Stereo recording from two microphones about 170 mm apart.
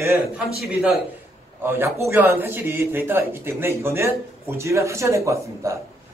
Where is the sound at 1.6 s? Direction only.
15° right (ahead or behind).